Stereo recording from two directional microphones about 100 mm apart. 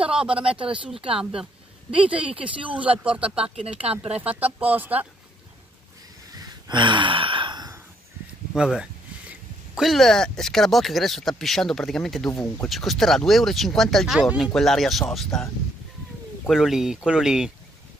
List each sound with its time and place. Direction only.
0.0 s speech: 10° right (ahead or behind)
0.4 s speech: 65° right (ahead or behind)
0.7 s speech: 5° right (ahead or behind)
1.0 s speech: 70° right (ahead or behind)
1.4 s speech: 10° right (ahead or behind)
6.3 s gasp: 50° right (ahead or behind)
8.5 s speech: 5° right (ahead or behind)
16.4 s speech: 5° right (ahead or behind)